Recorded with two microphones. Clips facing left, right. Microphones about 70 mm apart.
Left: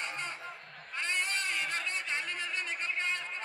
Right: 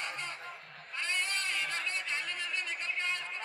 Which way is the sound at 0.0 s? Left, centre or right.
Left.